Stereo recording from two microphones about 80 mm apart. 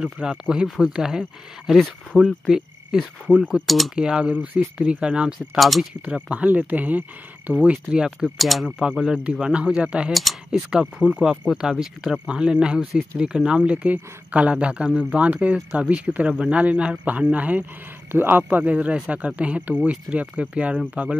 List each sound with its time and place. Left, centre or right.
0.0 s speech: centre
2.1 s cricket: centre
3.3 s speech: centre
5.6 s speech: centre
6.0 s speech: centre
10.1 s speech: centre
10.7 s speech: centre